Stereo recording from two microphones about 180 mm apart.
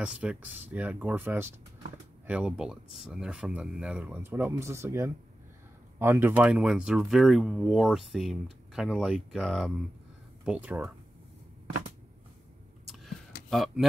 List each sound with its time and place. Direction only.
0.0 s speech: 5° right (ahead or behind)
12.8 s vehicle: centre (ahead or behind)
13.5 s speech: centre (ahead or behind)